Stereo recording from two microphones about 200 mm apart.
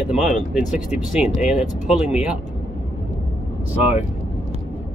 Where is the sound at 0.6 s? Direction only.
40° left (ahead or behind).